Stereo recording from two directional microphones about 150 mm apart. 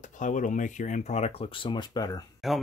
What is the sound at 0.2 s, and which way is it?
Speech, 60° left (ahead or behind).